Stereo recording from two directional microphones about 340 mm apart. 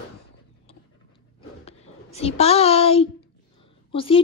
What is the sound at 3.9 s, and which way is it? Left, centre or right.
Speech, centre.